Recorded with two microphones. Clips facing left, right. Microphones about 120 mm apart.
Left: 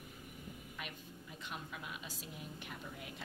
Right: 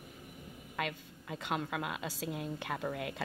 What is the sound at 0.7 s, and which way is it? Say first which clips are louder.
A woman's voice: right 15 dB; 90° right.